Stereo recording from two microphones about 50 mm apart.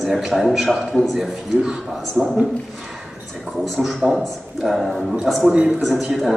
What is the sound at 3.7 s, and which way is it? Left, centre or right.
A man's voice, centre.